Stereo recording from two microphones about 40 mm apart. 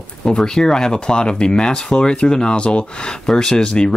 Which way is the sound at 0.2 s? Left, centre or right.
Centre.